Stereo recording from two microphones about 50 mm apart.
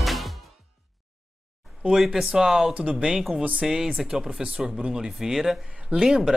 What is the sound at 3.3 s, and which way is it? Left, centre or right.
Speech, right.